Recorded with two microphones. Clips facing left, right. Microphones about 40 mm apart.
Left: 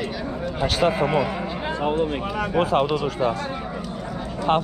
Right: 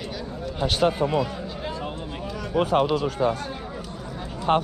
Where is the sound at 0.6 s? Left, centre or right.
Left.